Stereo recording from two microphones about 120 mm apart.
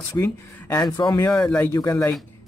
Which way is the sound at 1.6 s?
25° left (ahead or behind).